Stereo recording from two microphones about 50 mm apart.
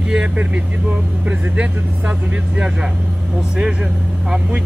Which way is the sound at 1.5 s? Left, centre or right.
Right.